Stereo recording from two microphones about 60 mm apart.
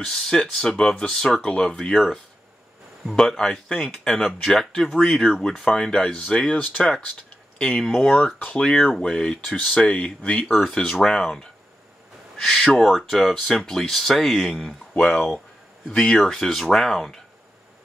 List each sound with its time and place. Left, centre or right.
0.0 s speech: centre
4.3 s speech: centre
15.0 s speech: left
16.2 s speech: centre